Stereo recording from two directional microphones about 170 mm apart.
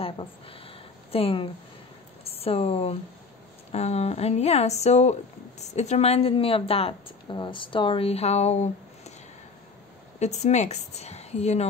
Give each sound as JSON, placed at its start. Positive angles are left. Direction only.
{"t": 0.0, "sound": "a woman's voice", "side_deg": 30}
{"t": 10.1, "sound": "a woman's voice", "side_deg": 40}